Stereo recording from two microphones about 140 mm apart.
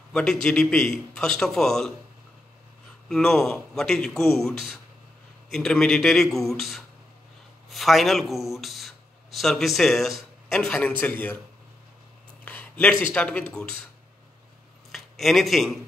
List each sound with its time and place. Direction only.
0.1 s a man's voice: 5° left (ahead or behind)
3.1 s a man's voice: 5° left (ahead or behind)
12.4 s a sound: 10° left (ahead or behind)
13.1 s speech: 10° left (ahead or behind)
14.9 s a man's voice: centre (ahead or behind)